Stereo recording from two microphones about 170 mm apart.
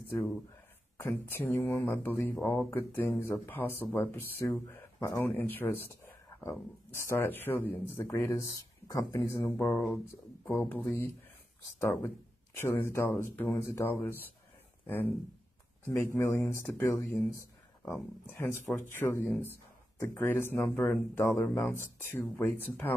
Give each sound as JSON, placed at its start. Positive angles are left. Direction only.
{"t": 1.0, "sound": "speech", "side_deg": 10}
{"t": 16.2, "sound": "speech", "side_deg": 15}
{"t": 17.4, "sound": "a sound", "side_deg": 10}
{"t": 18.3, "sound": "speech", "side_deg": 10}
{"t": 21.7, "sound": "speech", "side_deg": 15}